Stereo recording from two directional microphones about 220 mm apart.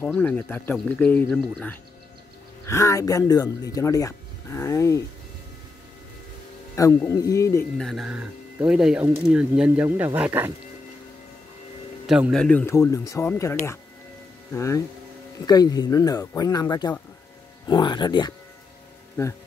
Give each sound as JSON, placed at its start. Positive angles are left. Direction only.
{"t": 0.0, "sound": "speech", "side_deg": 5}
{"t": 6.7, "sound": "speech", "side_deg": 15}
{"t": 7.7, "sound": "speech", "side_deg": 0}
{"t": 12.1, "sound": "speech", "side_deg": 0}